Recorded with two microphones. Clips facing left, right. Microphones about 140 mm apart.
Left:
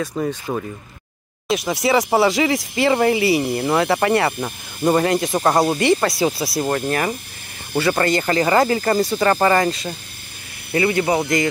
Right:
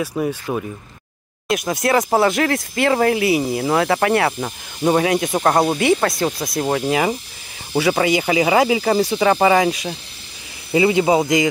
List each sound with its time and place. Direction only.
0.0 s speech: 5° right (ahead or behind)